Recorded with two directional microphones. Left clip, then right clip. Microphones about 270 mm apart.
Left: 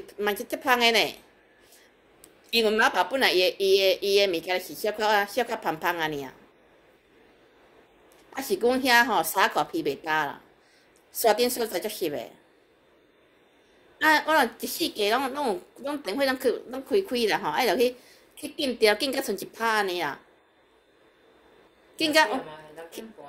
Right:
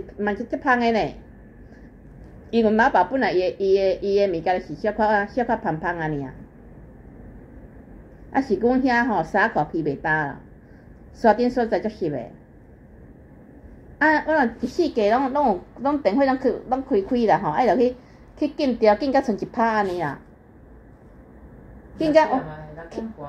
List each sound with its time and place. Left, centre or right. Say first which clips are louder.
0.0 s a woman's voice: right 2 dB; left
2.5 s a woman's voice: right 4 dB; left
8.5 s a woman's voice: even; left
14.0 s a woman's voice: right 2 dB; left
21.9 s a woman's voice: right 4 dB; left